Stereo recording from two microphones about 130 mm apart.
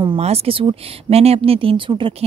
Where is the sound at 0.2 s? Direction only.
50° right (ahead or behind).